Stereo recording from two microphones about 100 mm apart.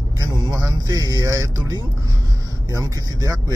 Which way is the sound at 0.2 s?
40° right (ahead or behind).